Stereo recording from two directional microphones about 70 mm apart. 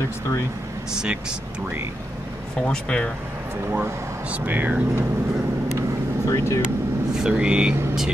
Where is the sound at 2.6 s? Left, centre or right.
Centre.